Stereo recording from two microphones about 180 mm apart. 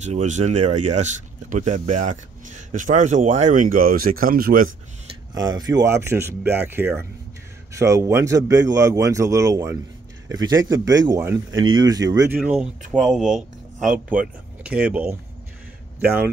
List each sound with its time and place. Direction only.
0.0 s speech: 40° right (ahead or behind)
5.3 s speech: 20° right (ahead or behind)
12.4 s speech: 5° right (ahead or behind)